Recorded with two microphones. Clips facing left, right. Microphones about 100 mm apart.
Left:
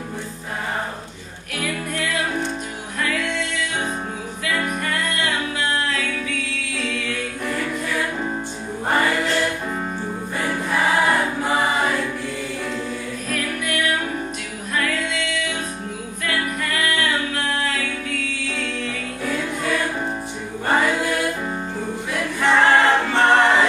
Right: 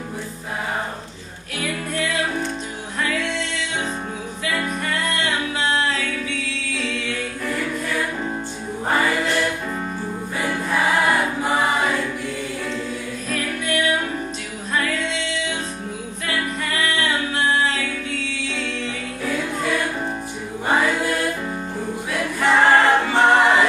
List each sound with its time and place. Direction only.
5.2 s music: 25° right (ahead or behind)
7.4 s choir: centre (ahead or behind)
8.9 s music: 5° right (ahead or behind)
11.5 s choir: centre (ahead or behind)
13.3 s music: 25° right (ahead or behind)
19.2 s music: centre (ahead or behind)
20.8 s music: centre (ahead or behind)
22.1 s choir: centre (ahead or behind)